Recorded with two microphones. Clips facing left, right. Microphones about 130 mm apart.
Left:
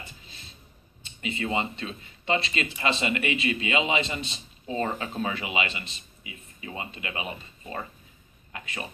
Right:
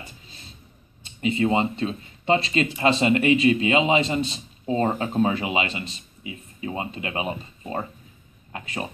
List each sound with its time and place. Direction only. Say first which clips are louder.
1.2 s speech: right 7 dB; 35° right (ahead or behind)
4.6 s speech: right 6 dB; 30° right (ahead or behind)